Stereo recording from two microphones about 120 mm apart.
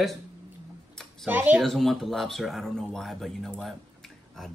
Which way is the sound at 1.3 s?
15° right (ahead or behind).